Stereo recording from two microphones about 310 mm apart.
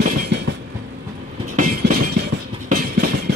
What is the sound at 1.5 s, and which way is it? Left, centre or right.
Train, right.